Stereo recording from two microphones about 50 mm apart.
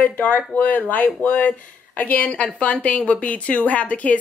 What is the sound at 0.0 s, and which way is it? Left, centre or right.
A woman's voice, left.